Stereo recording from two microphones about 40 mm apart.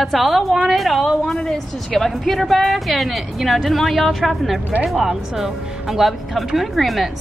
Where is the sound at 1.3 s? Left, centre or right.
Left.